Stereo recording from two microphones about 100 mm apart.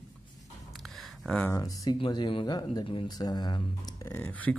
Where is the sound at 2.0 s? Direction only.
55° left (ahead or behind).